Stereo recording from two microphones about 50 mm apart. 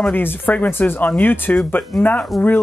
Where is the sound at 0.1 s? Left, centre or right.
Left.